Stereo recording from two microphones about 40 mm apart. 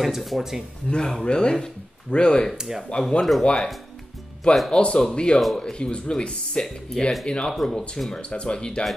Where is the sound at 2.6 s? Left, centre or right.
Centre.